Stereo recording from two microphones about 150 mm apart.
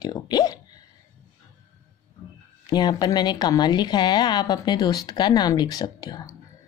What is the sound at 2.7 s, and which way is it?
Speech, 30° left (ahead or behind).